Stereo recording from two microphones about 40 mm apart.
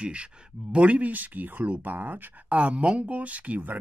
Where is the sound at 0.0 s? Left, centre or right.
Right.